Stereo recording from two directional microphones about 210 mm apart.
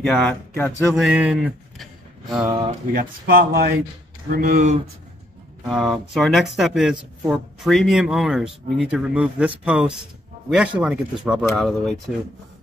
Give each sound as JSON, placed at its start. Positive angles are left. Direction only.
{"t": 0.0, "sound": "speech", "side_deg": 0}
{"t": 0.9, "sound": "speech", "side_deg": -5}
{"t": 2.4, "sound": "speech", "side_deg": -25}
{"t": 2.9, "sound": "speech", "side_deg": -45}
{"t": 5.7, "sound": "speech", "side_deg": 0}